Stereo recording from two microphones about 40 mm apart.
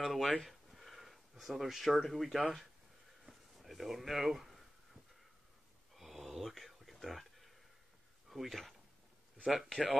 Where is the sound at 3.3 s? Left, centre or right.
Centre.